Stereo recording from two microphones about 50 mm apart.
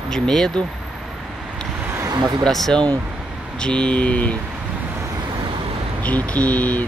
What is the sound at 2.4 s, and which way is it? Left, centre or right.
Speech, centre.